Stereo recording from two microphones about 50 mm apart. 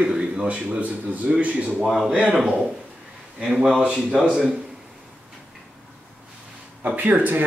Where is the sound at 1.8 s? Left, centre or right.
Centre.